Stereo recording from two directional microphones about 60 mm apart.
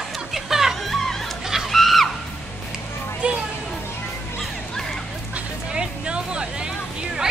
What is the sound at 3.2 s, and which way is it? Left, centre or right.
Music, centre.